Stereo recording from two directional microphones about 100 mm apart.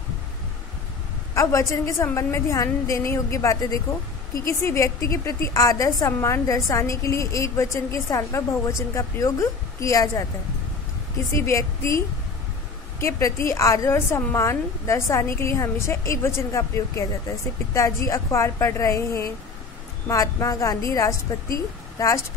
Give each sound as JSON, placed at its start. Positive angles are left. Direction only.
{"t": 1.3, "sound": "a woman's voice", "side_deg": 30}
{"t": 11.3, "sound": "a woman's voice", "side_deg": 30}
{"t": 13.0, "sound": "a woman's voice", "side_deg": 30}